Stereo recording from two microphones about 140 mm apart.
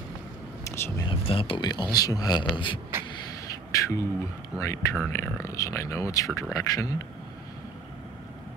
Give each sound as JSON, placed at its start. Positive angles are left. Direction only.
{"t": 0.7, "sound": "speech", "side_deg": 15}
{"t": 1.0, "sound": "speech", "side_deg": 40}
{"t": 3.7, "sound": "speech", "side_deg": 20}